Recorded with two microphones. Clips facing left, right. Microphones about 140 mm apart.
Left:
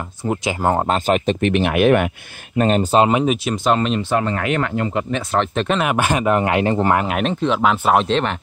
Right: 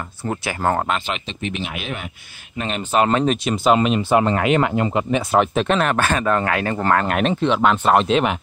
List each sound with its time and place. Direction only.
0.3 s speech: 15° left (ahead or behind)
0.8 s speech: 40° left (ahead or behind); by 2.0 s 60° left (ahead or behind)
2.5 s speech: 40° left (ahead or behind)
3.1 s speech: 10° left (ahead or behind)
3.4 s speech: 5° right (ahead or behind)
4.2 s speech: 20° right (ahead or behind); by 7.1 s 15° left (ahead or behind)
7.1 s speech: centre (ahead or behind)